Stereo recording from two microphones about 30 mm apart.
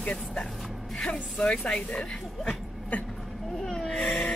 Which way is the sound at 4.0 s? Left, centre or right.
Centre.